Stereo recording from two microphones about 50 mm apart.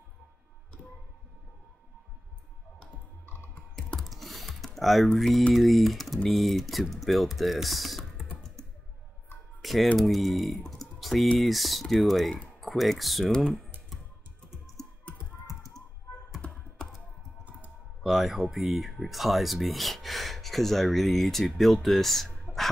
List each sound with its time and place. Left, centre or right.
4.0 s typing: centre
4.7 s speech: centre
9.6 s typing: centre
9.9 s speech: centre
10.7 s typing: centre
11.3 s speech: centre
15.1 s typing: left
16.7 s computer keyboard: centre
18.0 s music: centre
18.5 s speech: centre